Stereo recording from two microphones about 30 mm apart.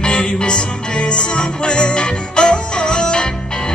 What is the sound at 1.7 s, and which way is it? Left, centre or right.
Music, left.